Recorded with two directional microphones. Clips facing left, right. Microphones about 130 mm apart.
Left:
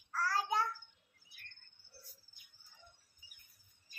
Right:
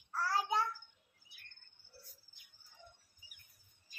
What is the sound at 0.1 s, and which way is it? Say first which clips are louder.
Child singing: even; 15° right (ahead or behind).